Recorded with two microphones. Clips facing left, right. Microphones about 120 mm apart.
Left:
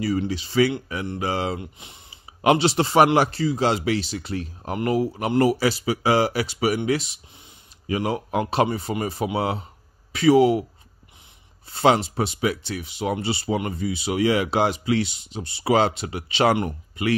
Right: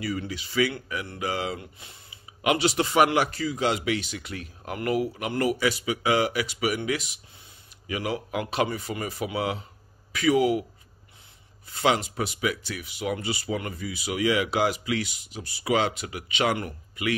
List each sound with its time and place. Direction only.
0.0 s a man's voice: 30° left (ahead or behind)
11.7 s speech: 30° left (ahead or behind)